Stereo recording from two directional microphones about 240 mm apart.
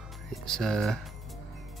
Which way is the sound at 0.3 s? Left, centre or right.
Centre.